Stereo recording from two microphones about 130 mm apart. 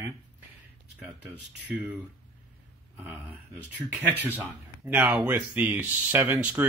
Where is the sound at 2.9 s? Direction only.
10° right (ahead or behind).